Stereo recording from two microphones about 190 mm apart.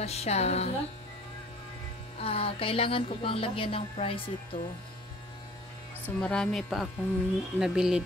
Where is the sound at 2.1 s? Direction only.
30° left (ahead or behind).